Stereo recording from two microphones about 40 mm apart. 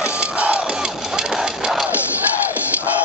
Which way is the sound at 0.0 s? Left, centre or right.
Right.